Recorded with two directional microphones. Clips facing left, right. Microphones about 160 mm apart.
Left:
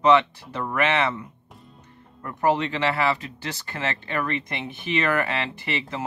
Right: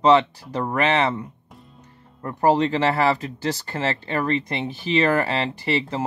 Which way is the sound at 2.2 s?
35° right (ahead or behind).